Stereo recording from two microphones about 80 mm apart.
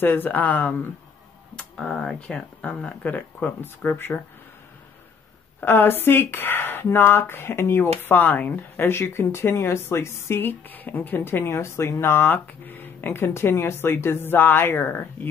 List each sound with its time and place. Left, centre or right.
0.0 s speech: left
1.6 s speech: centre; by 4.2 s left
5.6 s speech: left